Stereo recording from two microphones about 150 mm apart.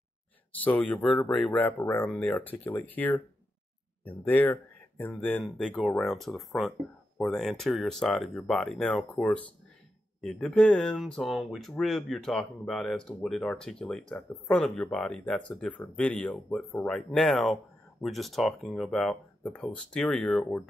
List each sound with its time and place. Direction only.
0.7 s speech: 10° left (ahead or behind)
4.2 s speech: 15° left (ahead or behind)